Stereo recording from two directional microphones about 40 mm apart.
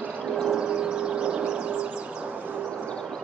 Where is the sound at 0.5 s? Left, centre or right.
Right.